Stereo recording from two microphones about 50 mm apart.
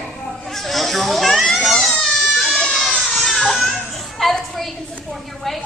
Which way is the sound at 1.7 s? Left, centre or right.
Centre.